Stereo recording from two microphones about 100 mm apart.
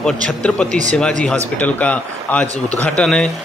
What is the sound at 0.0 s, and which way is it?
Speech, 10° left (ahead or behind).